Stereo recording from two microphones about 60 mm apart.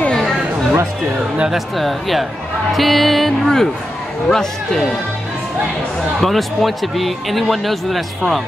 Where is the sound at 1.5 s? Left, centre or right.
Centre.